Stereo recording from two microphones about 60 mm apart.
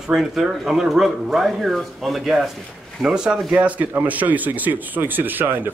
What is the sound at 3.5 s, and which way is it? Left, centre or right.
Speech, right.